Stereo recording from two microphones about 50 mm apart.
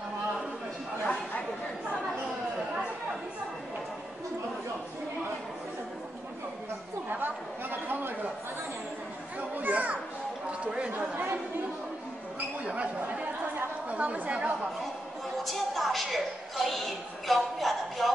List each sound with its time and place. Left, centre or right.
7.1 s chatter: right
9.6 s children playing: right
10.9 s chatter: right
12.6 s chatter: right
15.4 s a sound: centre